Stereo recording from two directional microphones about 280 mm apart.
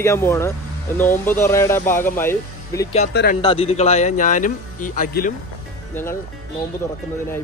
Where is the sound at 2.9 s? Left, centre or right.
Left.